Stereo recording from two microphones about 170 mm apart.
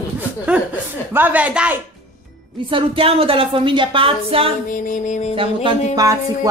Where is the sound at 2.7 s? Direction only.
30° right (ahead or behind).